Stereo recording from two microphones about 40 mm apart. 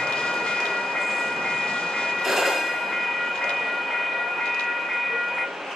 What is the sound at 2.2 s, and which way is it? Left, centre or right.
Train, centre.